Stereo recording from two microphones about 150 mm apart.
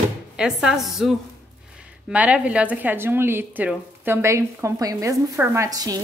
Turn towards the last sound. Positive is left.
turn(degrees=-25)  # may be behind; listen again after turning